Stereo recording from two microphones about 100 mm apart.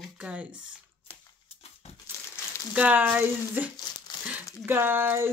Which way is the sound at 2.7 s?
15° right (ahead or behind).